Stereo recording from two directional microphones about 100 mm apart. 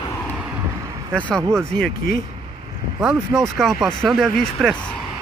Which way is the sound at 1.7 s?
10° left (ahead or behind).